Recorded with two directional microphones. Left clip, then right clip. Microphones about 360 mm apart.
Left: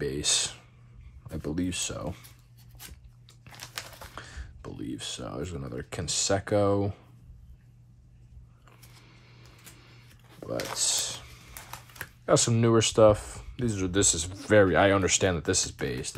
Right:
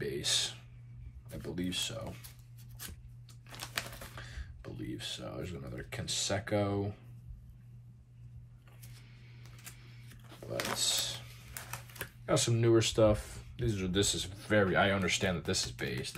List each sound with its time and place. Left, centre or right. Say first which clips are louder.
0.0 s whispering: left 5 dB; centre
1.5 s speech: left 4 dB; centre
3.7 s speech: even; centre
10.8 s typing: left 4 dB; centre
12.3 s speech: left 6 dB; centre